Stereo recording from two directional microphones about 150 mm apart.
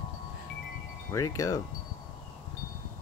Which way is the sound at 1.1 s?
20° left (ahead or behind).